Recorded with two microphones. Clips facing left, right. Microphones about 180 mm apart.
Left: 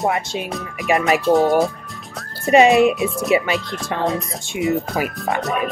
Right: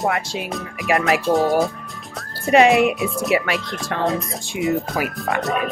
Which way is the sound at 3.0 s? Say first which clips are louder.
Left 2 dB; centre (ahead or behind).